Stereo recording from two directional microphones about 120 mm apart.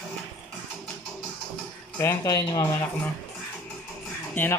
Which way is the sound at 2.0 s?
25° left (ahead or behind).